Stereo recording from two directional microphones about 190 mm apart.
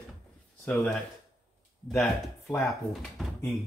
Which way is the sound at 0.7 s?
10° left (ahead or behind).